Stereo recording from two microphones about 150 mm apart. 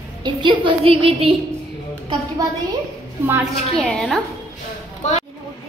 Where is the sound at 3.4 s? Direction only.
5° left (ahead or behind).